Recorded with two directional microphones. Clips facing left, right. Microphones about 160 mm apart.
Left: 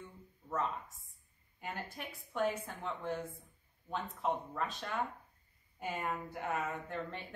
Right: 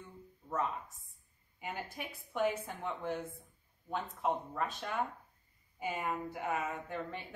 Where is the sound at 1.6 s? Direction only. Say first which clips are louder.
Right 1 dB; 5° right (ahead or behind).